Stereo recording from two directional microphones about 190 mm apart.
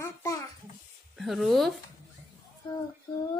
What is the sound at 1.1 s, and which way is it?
Speech, centre (ahead or behind).